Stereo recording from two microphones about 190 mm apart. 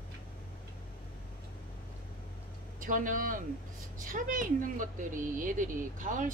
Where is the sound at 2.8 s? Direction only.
45° right (ahead or behind).